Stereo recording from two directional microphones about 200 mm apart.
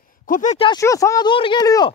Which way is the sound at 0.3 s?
40° left (ahead or behind).